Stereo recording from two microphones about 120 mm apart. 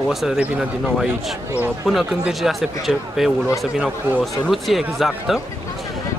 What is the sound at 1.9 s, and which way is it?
A man's voice, centre (ahead or behind).